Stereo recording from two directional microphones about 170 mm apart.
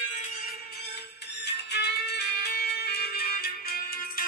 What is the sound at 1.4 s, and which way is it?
Music, 80° left.